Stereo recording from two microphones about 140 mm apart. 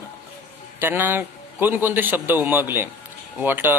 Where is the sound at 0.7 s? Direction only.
15° right (ahead or behind).